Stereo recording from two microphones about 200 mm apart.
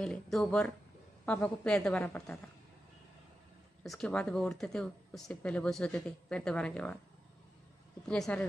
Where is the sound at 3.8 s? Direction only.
Centre (ahead or behind).